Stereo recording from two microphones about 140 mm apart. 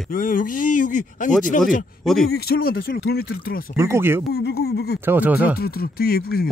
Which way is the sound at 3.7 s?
20° right (ahead or behind).